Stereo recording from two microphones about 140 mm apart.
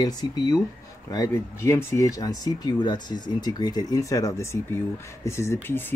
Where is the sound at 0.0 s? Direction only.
30° left (ahead or behind).